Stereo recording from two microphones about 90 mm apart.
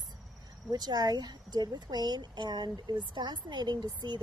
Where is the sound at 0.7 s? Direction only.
50° right (ahead or behind).